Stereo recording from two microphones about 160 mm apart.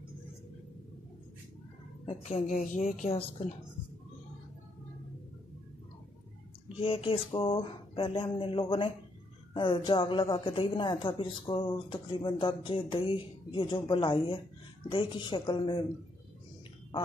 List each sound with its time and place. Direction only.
2.0 s speech: 40° left (ahead or behind)
6.8 s a woman's voice: 35° left (ahead or behind)